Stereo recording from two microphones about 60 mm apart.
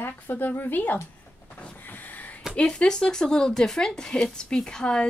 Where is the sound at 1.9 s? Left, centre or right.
Left.